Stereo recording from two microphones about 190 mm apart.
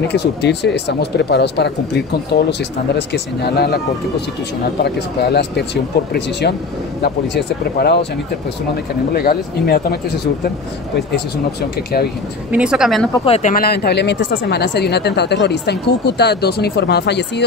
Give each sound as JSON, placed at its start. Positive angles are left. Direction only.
{"t": 0.1, "sound": "speech", "side_deg": 60}
{"t": 4.8, "sound": "speech", "side_deg": 60}
{"t": 7.0, "sound": "speech", "side_deg": 60}
{"t": 9.1, "sound": "speech", "side_deg": 55}
{"t": 12.4, "sound": "a woman's voice", "side_deg": -5}
{"t": 13.1, "sound": "speech", "side_deg": 30}